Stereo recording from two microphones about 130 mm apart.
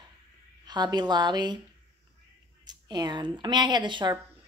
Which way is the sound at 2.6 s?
35° right (ahead or behind).